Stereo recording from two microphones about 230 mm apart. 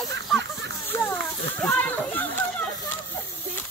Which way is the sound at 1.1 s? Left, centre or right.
Centre.